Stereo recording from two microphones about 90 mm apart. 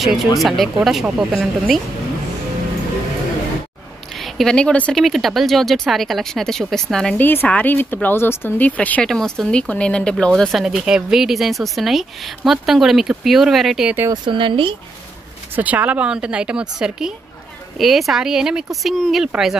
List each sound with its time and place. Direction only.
0.0 s speech: centre (ahead or behind)
4.2 s speech: 5° left (ahead or behind)
4.9 s speech: centre (ahead or behind)
7.2 s speech: 20° left (ahead or behind)
9.0 s speech: 5° left (ahead or behind)
10.5 s speech: 5° right (ahead or behind)
14.1 s speech: 65° right (ahead or behind)
15.5 s speech: 20° right (ahead or behind)